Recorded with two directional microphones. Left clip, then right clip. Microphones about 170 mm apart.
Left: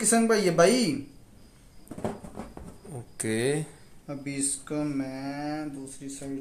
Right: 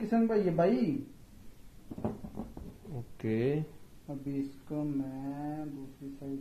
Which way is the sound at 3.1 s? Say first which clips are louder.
Left 4 dB; 20° left (ahead or behind).